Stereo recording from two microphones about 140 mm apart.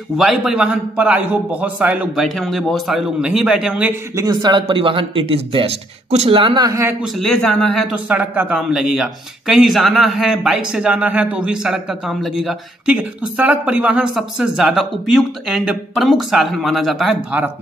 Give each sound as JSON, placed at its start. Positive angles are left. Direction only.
{"t": 0.2, "sound": "a man's voice", "side_deg": -5}
{"t": 2.1, "sound": "speech", "side_deg": 0}
{"t": 4.1, "sound": "a man's voice", "side_deg": -25}
{"t": 7.2, "sound": "speech", "side_deg": 5}
{"t": 7.9, "sound": "speech", "side_deg": -10}